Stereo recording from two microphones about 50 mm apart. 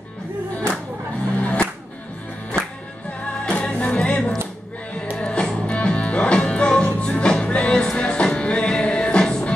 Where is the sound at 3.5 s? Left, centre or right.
Left.